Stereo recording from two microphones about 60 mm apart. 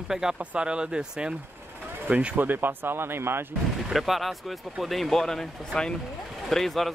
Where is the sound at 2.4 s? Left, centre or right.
Right.